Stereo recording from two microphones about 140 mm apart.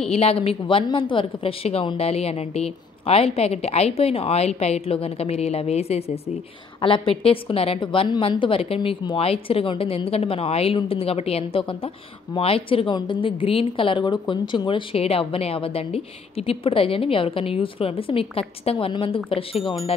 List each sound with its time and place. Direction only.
0.1 s a woman's voice: 45° left (ahead or behind)